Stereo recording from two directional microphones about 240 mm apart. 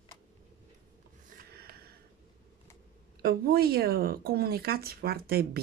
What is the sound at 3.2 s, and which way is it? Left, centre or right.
Speech, right.